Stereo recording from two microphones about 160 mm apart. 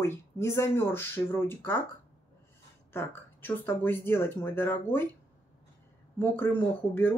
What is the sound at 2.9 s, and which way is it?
Speech, 15° left (ahead or behind).